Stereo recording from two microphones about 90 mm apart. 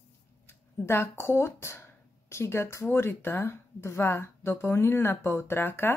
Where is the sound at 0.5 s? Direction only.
25° left (ahead or behind).